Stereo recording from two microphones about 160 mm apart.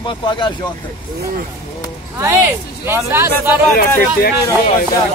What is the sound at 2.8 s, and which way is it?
Speech, 15° right (ahead or behind).